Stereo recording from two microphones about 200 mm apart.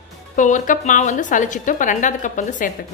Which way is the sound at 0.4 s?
40° left (ahead or behind).